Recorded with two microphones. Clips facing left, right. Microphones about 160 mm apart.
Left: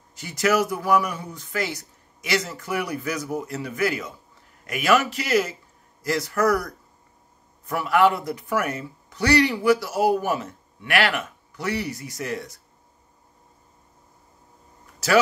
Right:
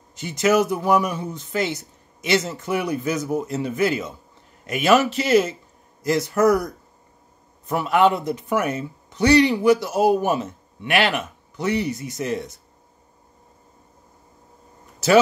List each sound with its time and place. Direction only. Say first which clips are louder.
0.1 s speech: right 3 dB; 20° right (ahead or behind)